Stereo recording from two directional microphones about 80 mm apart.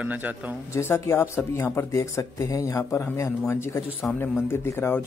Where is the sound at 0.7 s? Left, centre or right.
Left.